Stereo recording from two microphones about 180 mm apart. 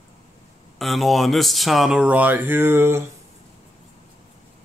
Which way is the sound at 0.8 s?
Centre (ahead or behind).